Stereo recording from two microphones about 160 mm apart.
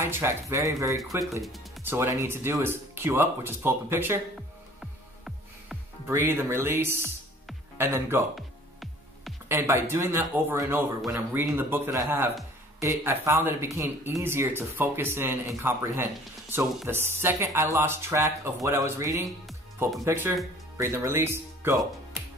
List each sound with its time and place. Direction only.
0.0 s speech: 15° right (ahead or behind)
6.0 s speech: 15° right (ahead or behind)
9.5 s speech: 15° right (ahead or behind)